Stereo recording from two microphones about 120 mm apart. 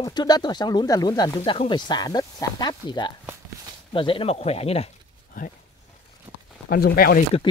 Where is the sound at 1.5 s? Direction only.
45° left (ahead or behind).